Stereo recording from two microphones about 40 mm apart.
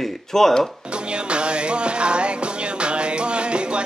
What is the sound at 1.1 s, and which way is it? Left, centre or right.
Music, right.